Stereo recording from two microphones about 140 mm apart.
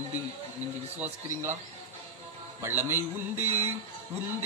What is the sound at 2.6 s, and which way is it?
Speech, 15° right (ahead or behind).